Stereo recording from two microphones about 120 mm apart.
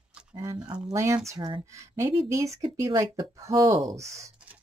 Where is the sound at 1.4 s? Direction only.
40° right (ahead or behind).